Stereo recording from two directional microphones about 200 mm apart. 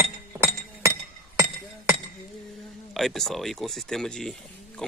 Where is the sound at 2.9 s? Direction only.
Centre (ahead or behind).